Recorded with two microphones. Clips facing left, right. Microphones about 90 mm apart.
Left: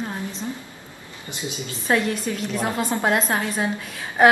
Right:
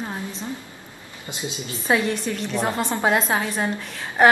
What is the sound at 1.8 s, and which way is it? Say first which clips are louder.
A woman's voice: even; centre (ahead or behind).